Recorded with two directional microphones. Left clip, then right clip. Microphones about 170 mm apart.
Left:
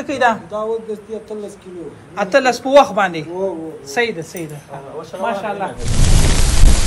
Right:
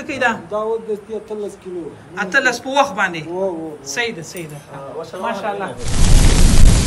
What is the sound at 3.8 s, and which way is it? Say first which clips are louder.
Speech: left 4 dB; 30° left (ahead or behind).